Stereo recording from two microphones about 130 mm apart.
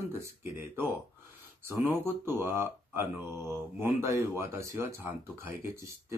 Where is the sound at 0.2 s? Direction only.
20° right (ahead or behind).